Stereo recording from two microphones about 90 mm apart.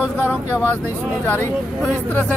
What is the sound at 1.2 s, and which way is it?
Speech, 25° left (ahead or behind).